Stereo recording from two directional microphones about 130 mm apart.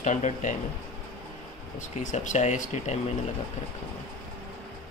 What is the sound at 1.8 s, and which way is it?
Speech, 70° left (ahead or behind).